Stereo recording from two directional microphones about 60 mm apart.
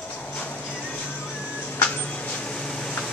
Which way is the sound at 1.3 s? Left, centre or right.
Left.